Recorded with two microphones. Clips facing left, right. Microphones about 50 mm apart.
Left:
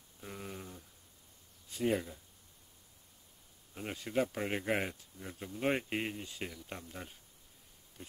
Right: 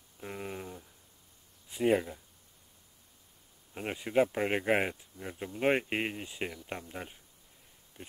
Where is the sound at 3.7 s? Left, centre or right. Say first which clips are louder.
Right 5 dB; right.